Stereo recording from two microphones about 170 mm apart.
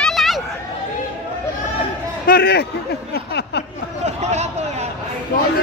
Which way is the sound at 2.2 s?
65° left (ahead or behind).